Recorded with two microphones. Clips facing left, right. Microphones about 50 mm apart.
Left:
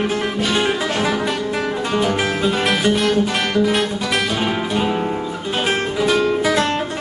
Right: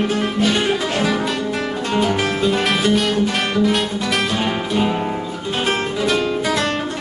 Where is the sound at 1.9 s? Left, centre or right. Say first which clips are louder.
Right 1 dB; centre.